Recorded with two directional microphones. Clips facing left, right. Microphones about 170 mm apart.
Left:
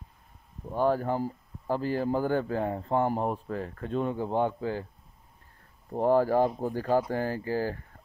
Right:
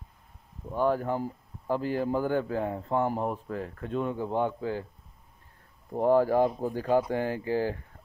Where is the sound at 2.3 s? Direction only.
10° right (ahead or behind).